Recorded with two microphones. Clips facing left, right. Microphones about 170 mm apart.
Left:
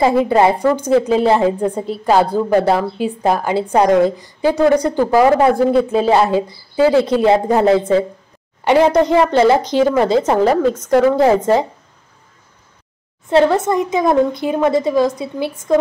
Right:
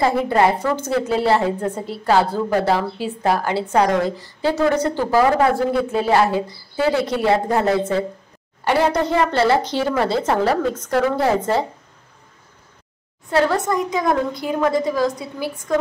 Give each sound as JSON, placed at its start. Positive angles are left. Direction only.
{"t": 0.0, "sound": "a woman's voice", "side_deg": 20}
{"t": 13.3, "sound": "a woman's voice", "side_deg": 25}